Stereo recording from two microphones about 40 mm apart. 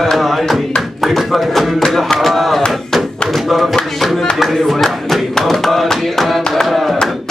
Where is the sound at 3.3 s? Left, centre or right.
Centre.